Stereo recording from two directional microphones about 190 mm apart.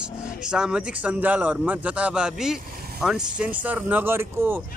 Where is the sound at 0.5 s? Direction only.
5° right (ahead or behind).